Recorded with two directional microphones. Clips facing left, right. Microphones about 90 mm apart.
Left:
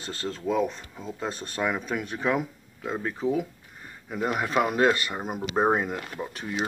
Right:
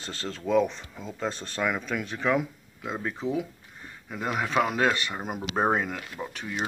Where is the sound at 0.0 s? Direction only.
30° right (ahead or behind).